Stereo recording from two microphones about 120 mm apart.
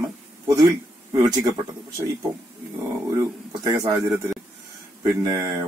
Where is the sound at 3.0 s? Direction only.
30° right (ahead or behind).